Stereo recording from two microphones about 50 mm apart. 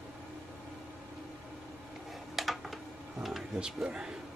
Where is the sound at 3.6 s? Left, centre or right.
Centre.